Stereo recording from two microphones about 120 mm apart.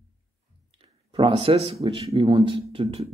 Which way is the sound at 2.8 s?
55° right (ahead or behind).